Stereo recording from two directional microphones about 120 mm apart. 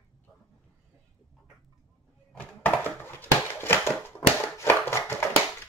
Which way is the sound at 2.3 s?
15° left (ahead or behind).